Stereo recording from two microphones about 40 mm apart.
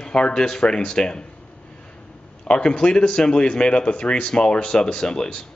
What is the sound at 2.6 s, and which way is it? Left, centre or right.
A man's voice, left.